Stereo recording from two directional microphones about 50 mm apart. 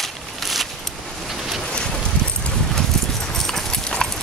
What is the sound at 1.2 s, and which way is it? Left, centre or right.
Boat, centre.